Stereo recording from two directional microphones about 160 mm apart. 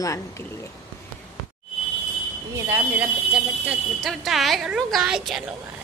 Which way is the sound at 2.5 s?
15° right (ahead or behind).